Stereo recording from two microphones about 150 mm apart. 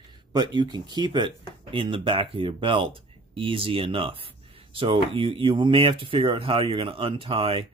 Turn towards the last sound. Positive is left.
turn(degrees=-35)  # may be behind; listen again after turning